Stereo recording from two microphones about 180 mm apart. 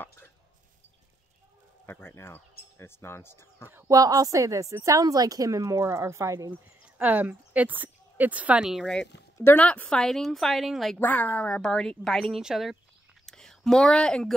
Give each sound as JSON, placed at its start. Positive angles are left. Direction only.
{"t": 0.0, "sound": "a sound", "side_deg": 10}
{"t": 1.9, "sound": "speech", "side_deg": 15}
{"t": 3.8, "sound": "a woman's voice", "side_deg": -20}